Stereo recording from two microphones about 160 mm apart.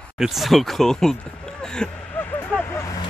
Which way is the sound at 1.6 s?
5° left (ahead or behind).